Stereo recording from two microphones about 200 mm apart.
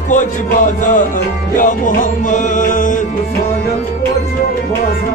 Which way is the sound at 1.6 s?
40° left (ahead or behind).